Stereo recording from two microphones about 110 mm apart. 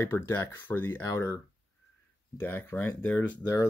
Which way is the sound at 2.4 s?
20° left (ahead or behind).